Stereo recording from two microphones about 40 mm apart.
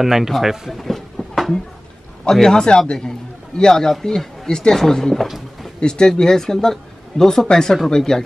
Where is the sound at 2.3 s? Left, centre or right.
Centre.